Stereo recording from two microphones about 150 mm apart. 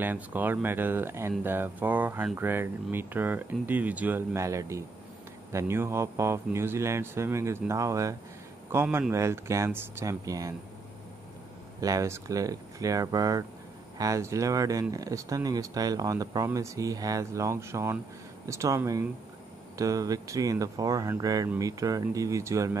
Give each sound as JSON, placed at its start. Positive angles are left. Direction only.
{"t": 0.0, "sound": "speech", "side_deg": -10}
{"t": 11.8, "sound": "speech", "side_deg": -20}